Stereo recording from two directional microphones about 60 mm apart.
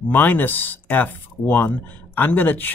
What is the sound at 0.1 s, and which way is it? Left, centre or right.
Speech, left.